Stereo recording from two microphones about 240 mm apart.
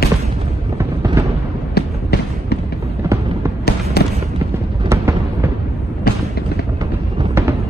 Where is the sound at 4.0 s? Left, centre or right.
Left.